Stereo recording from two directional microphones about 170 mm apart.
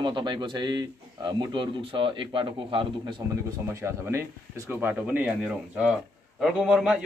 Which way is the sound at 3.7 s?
15° right (ahead or behind).